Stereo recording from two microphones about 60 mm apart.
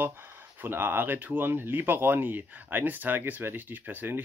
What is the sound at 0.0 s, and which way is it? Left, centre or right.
Speech, right.